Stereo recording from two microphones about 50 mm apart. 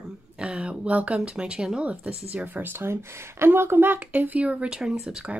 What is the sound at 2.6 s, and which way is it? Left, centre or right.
Speech, right.